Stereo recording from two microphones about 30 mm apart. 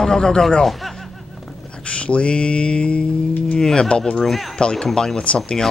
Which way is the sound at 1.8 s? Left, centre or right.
Left.